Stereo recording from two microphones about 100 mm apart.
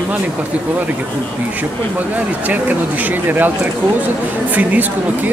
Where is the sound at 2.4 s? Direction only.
15° right (ahead or behind).